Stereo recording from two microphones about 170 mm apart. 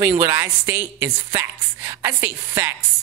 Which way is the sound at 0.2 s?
15° right (ahead or behind).